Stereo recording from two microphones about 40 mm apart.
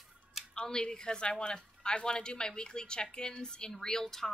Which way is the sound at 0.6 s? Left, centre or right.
Left.